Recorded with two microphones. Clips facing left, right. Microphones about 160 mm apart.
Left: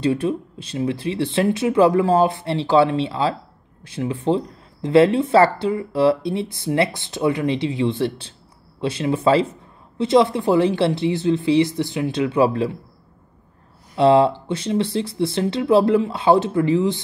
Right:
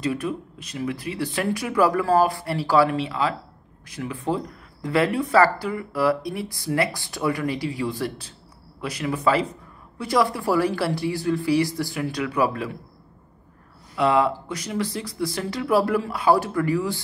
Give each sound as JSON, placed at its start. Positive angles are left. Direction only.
{"t": 0.0, "sound": "speech", "side_deg": 30}
{"t": 13.9, "sound": "speech", "side_deg": 30}